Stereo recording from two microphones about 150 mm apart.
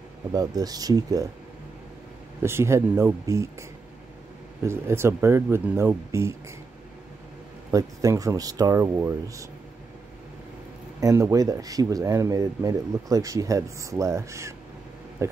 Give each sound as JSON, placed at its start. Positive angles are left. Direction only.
{"t": 0.3, "sound": "speech", "side_deg": -25}
{"t": 2.4, "sound": "speech", "side_deg": -15}
{"t": 4.6, "sound": "speech", "side_deg": -15}
{"t": 7.7, "sound": "speech", "side_deg": -20}
{"t": 11.0, "sound": "speech", "side_deg": -20}